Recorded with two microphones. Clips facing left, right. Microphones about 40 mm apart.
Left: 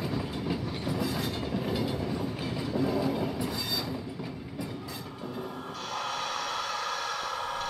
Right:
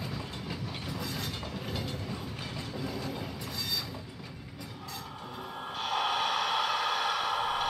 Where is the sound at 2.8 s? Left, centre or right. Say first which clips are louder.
Left 9 dB; centre.